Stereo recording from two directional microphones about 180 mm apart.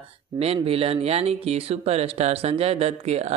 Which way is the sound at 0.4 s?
35° right (ahead or behind).